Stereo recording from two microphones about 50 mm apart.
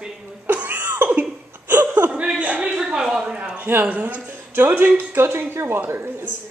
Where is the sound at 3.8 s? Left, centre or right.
Right.